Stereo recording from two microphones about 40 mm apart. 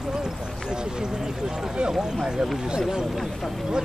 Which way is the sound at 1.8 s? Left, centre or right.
Centre.